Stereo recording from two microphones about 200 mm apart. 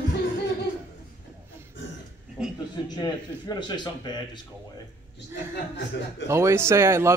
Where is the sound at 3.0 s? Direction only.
20° left (ahead or behind).